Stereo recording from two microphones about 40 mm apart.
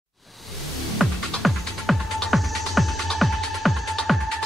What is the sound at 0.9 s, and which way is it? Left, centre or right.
Music, centre.